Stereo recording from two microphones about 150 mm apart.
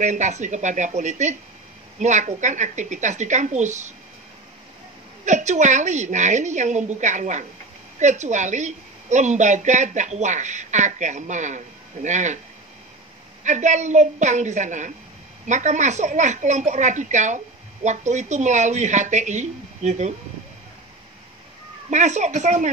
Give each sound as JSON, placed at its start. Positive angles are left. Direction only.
{"t": 0.0, "sound": "a woman's voice", "side_deg": -55}
{"t": 5.2, "sound": "a woman's voice", "side_deg": -55}
{"t": 13.4, "sound": "a woman's voice", "side_deg": -55}
{"t": 21.9, "sound": "a woman's voice", "side_deg": -50}